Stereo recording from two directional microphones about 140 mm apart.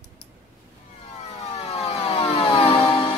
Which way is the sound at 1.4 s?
50° left (ahead or behind).